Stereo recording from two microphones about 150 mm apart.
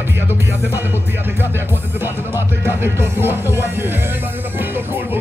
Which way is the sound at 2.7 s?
15° right (ahead or behind).